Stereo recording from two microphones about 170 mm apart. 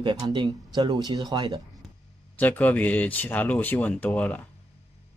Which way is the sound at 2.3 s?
10° left (ahead or behind).